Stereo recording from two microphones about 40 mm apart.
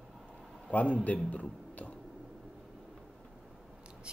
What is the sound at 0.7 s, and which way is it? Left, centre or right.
Speech, left.